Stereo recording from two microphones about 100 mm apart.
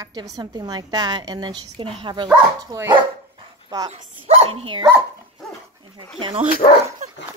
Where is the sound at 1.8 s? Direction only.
65° right (ahead or behind).